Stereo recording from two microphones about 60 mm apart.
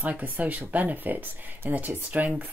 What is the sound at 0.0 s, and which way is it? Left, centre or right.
Speech, right.